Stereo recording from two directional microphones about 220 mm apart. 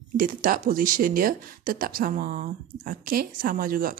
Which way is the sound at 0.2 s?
40° right (ahead or behind).